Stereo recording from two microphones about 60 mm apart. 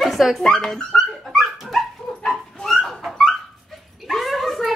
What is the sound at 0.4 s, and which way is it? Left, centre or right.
Dog, centre.